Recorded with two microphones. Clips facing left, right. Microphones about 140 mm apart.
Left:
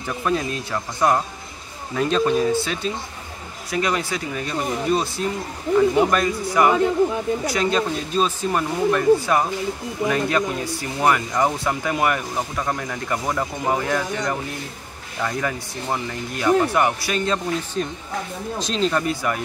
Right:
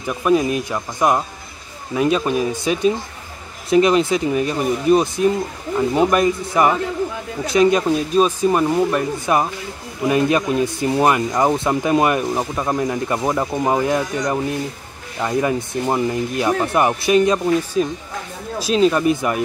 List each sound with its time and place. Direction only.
0.0 s speech: 15° right (ahead or behind)